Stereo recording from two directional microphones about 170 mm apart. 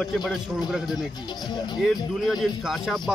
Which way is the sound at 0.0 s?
Centre (ahead or behind).